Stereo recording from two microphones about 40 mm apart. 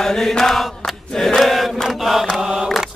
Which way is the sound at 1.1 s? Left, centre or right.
Centre.